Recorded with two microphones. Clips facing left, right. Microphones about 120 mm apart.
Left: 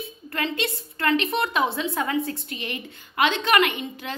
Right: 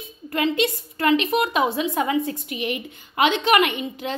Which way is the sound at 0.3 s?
20° right (ahead or behind).